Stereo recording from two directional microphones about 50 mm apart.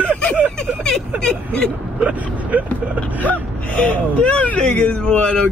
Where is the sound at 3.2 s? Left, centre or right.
Left.